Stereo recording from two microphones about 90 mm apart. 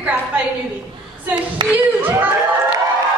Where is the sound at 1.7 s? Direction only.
20° right (ahead or behind).